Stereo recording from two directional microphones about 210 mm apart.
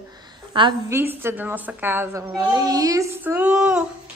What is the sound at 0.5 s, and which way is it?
A woman's voice, 20° right (ahead or behind).